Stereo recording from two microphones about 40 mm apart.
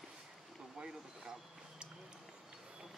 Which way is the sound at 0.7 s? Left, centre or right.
Centre.